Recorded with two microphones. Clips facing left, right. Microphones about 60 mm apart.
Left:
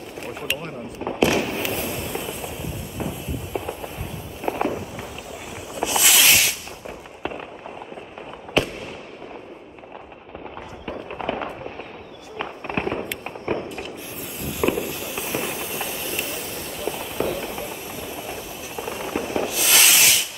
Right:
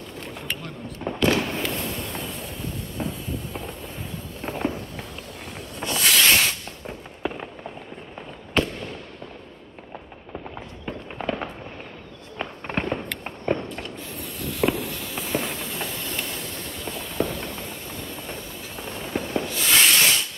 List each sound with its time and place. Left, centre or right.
0.2 s a sound: centre
1.0 s fireworks: centre
3.5 s a sound: centre
4.4 s fireworks: centre
8.5 s fireworks: centre
10.9 s fireworks: centre
13.7 s mechanisms: centre